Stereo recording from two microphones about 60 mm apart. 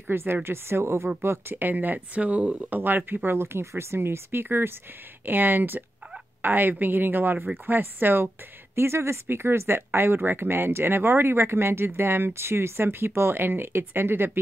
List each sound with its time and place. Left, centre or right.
0.1 s speech: right
2.7 s speech: right
3.3 s speech: right